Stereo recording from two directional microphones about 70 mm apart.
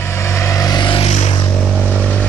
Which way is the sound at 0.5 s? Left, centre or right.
Left.